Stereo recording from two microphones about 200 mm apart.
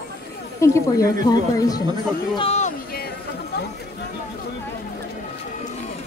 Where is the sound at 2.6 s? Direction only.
50° left (ahead or behind).